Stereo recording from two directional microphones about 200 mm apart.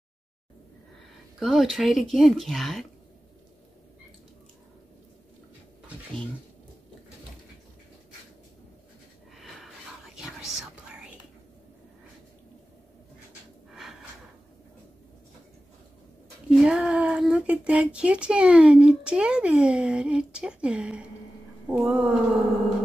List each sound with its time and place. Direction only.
1.4 s speech: centre (ahead or behind)
9.3 s snort: centre (ahead or behind)
10.1 s whispering: centre (ahead or behind)
16.4 s speech: 5° right (ahead or behind)